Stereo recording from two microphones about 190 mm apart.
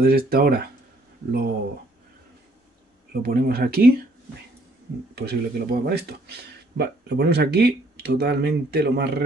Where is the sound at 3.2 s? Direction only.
50° right (ahead or behind).